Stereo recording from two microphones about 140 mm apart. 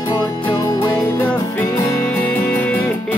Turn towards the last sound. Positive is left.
turn(degrees=10)  # may be behind; listen again after turning